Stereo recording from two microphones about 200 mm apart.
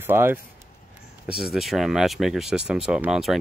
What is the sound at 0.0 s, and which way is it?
Speech, 10° right (ahead or behind).